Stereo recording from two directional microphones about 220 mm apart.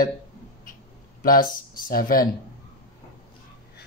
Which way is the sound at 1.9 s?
40° left (ahead or behind).